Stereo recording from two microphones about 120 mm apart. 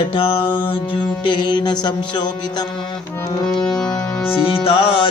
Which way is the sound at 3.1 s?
20° left (ahead or behind).